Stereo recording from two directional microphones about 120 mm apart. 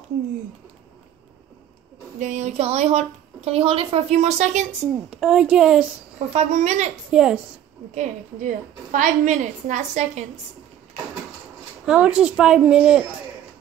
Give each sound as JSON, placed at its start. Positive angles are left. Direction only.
{"t": 2.1, "sound": "a woman's voice", "side_deg": -90}
{"t": 4.9, "sound": "a woman's voice", "side_deg": -5}
{"t": 6.1, "sound": "a woman's voice", "side_deg": -75}
{"t": 7.1, "sound": "speech", "side_deg": -5}
{"t": 7.9, "sound": "a woman's voice", "side_deg": -90}
{"t": 11.8, "sound": "speech", "side_deg": -10}